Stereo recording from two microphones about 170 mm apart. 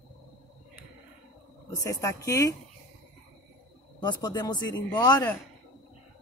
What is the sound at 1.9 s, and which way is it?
Speech, 20° left (ahead or behind).